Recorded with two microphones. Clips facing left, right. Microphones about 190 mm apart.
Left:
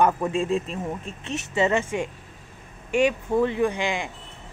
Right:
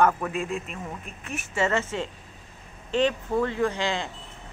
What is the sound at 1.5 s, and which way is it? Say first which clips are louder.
A man's voice: left 3 dB; 15° left (ahead or behind).